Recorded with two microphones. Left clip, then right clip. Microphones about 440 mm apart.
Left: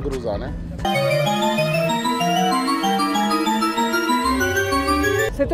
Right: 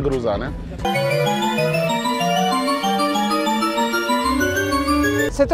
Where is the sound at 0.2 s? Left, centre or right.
Right.